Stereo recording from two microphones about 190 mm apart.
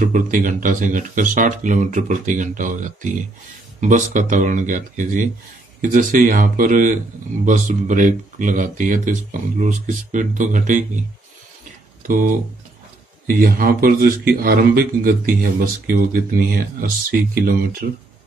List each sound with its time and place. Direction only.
0.0 s speech: 45° right (ahead or behind)
12.1 s speech: 45° right (ahead or behind)